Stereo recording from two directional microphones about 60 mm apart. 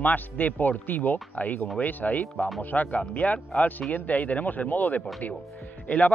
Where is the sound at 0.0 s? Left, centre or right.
Left.